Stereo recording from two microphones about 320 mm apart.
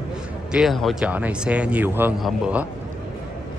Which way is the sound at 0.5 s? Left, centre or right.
Centre.